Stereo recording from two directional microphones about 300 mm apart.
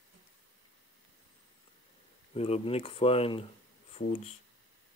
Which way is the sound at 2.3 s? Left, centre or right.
Centre.